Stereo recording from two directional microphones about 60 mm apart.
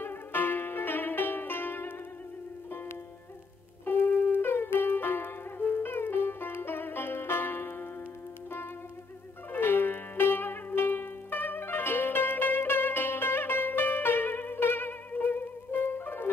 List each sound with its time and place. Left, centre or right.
0.0 s music: left
3.8 s music: left
9.5 s music: left